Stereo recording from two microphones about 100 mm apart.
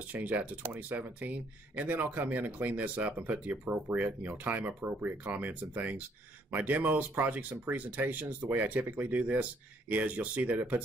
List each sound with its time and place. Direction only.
0.1 s speech: 15° right (ahead or behind)